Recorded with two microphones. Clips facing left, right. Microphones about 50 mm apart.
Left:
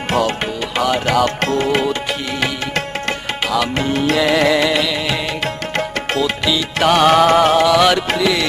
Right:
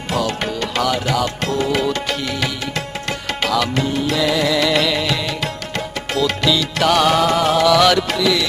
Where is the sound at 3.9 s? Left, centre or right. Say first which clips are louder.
Left 5 dB; left.